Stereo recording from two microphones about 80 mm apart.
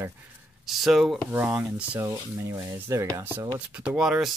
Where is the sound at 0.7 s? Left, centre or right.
Centre.